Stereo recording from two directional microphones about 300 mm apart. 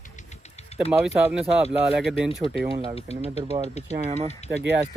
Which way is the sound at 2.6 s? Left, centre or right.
Centre.